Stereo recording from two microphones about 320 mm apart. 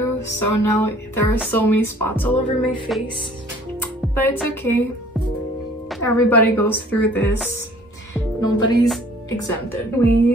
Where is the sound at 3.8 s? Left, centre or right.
Centre.